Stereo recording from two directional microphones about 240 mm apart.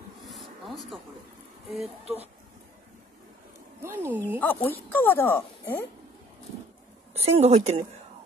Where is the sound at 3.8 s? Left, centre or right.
Centre.